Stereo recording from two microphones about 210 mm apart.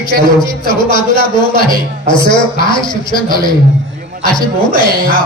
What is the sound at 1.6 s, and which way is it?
Speech, 20° left (ahead or behind).